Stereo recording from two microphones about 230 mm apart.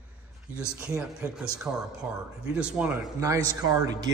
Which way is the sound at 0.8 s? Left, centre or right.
Centre.